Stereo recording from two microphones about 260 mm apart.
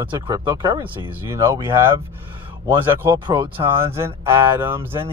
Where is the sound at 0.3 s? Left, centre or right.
Centre.